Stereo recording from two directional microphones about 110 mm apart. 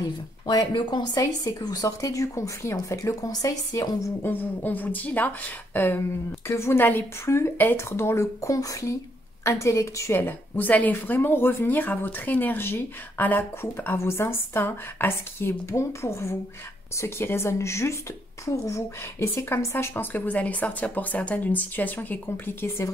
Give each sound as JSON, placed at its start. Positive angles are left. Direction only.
{"t": 0.5, "sound": "speech", "side_deg": 40}
{"t": 4.2, "sound": "a woman's voice", "side_deg": 15}